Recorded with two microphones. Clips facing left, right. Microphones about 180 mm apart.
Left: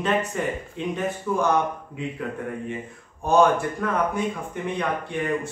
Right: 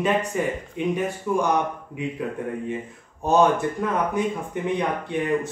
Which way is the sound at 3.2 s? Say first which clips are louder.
Even; 20° right (ahead or behind).